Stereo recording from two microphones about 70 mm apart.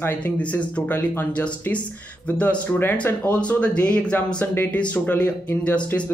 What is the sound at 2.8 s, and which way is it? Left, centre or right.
Speech, left.